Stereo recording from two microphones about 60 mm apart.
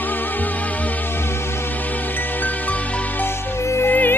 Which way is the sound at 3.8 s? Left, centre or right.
Left.